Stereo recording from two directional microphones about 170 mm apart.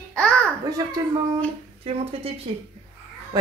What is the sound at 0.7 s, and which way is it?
Speech, 20° right (ahead or behind).